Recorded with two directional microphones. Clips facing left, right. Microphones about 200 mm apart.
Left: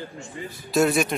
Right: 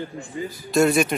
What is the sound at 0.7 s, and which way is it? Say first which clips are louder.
Speech: right 2 dB; centre (ahead or behind).